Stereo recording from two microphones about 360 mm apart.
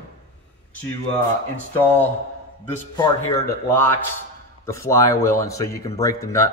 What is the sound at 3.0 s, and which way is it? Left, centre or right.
A man's voice, centre.